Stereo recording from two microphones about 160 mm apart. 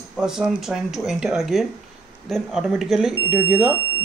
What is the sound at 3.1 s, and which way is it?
Speech, 10° right (ahead or behind).